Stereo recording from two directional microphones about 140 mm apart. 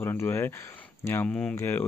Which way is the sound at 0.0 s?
20° left (ahead or behind).